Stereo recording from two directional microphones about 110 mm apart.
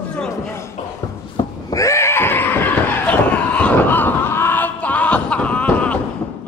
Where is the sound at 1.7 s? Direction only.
30° left (ahead or behind); by 5.9 s 10° left (ahead or behind).